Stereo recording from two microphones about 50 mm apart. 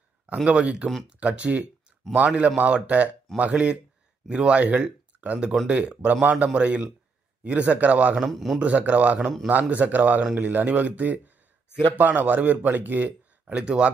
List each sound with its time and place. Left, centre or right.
0.5 s speech: right
8.2 s a man's voice: centre
8.5 s a man's voice: right
13.6 s speech: right